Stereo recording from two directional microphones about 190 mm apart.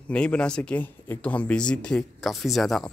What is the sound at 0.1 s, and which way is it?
Speech, 5° left (ahead or behind).